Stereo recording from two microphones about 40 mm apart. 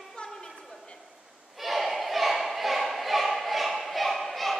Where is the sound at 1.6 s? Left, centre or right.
Centre.